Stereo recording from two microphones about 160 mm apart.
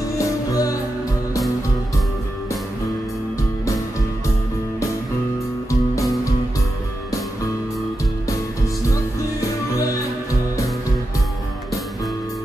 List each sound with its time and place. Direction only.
0.2 s music: 20° left (ahead or behind)
5.7 s music: 20° left (ahead or behind)
8.9 s music: 20° left (ahead or behind)